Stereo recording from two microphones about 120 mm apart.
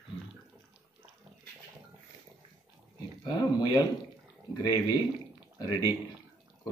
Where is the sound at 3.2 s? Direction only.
35° left (ahead or behind).